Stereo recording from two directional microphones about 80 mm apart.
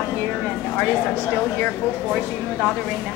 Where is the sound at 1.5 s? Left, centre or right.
Centre.